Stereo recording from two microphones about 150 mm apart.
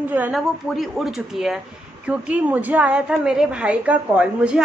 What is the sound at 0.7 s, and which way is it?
Speech, centre (ahead or behind).